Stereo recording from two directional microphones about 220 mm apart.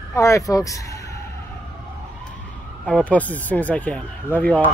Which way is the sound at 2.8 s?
5° left (ahead or behind).